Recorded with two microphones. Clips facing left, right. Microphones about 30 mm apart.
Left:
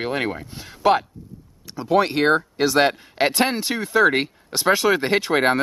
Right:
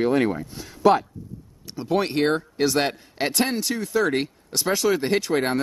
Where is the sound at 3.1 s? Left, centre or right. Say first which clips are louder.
Left 2 dB; centre.